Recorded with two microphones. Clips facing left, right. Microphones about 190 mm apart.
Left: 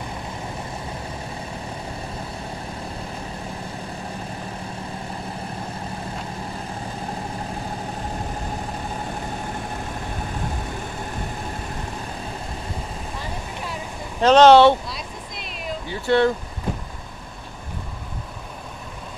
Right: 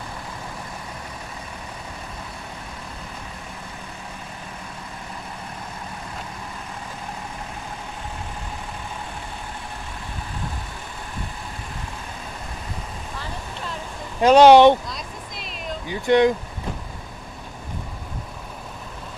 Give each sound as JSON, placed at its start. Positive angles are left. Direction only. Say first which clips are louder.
{"t": 13.2, "sound": "vehicle", "louder": "even", "side_deg": 10}
{"t": 14.2, "sound": "speech", "louder": "right 1 dB", "side_deg": -10}
{"t": 14.9, "sound": "vehicle", "louder": "left 1 dB", "side_deg": 0}
{"t": 15.9, "sound": "speech", "louder": "right 2 dB", "side_deg": -15}